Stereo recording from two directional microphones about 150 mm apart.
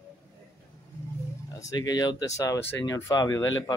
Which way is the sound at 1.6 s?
25° left (ahead or behind).